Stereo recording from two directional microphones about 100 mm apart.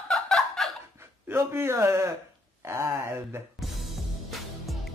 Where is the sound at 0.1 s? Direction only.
Centre (ahead or behind).